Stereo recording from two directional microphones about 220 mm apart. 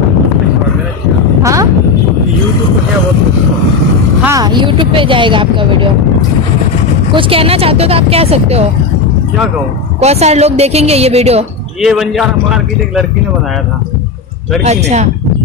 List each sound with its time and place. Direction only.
1.4 s a sound: 15° right (ahead or behind)
4.2 s a woman's voice: 15° right (ahead or behind)
7.2 s a woman's voice: 25° right (ahead or behind)
9.9 s a woman's voice: 30° right (ahead or behind)
11.8 s a man's voice: centre (ahead or behind)
14.6 s speech: 30° right (ahead or behind)